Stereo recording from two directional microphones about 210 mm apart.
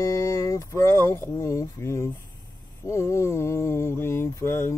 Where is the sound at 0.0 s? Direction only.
15° left (ahead or behind).